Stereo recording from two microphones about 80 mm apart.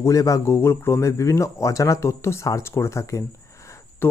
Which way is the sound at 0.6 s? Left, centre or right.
Left.